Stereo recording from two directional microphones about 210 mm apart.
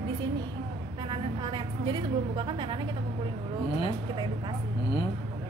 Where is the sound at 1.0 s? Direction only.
20° right (ahead or behind).